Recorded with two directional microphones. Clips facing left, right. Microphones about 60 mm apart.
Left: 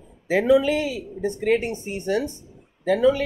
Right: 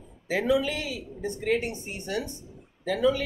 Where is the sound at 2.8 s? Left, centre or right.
Left.